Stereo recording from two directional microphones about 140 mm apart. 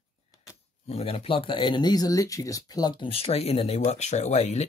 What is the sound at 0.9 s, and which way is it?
Speech, 45° left (ahead or behind).